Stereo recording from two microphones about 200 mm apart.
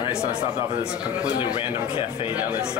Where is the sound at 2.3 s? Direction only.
5° right (ahead or behind).